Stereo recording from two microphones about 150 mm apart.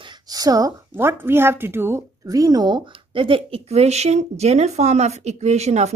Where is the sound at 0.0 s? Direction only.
25° right (ahead or behind).